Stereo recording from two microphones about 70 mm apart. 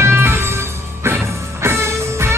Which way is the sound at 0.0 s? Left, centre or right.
Right.